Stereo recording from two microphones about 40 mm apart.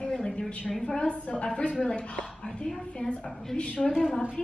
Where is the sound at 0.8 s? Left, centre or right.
Left.